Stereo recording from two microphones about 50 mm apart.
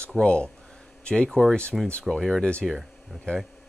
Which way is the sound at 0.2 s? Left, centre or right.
Left.